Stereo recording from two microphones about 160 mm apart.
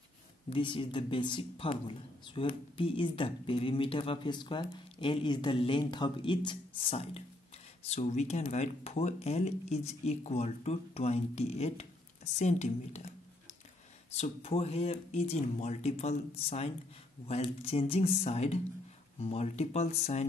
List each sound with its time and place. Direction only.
0.5 s a man's voice: 30° left (ahead or behind)
14.1 s a man's voice: 40° left (ahead or behind)